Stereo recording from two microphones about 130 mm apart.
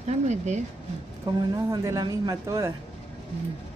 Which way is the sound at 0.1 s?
60° right (ahead or behind).